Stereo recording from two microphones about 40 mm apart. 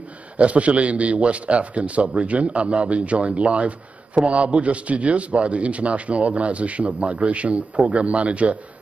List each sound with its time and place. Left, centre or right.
0.4 s a man's voice: right